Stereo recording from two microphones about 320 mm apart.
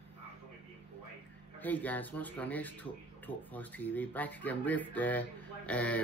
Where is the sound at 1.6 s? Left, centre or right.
Centre.